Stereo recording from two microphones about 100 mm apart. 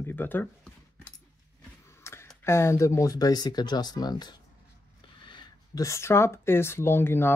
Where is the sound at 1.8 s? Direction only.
25° left (ahead or behind).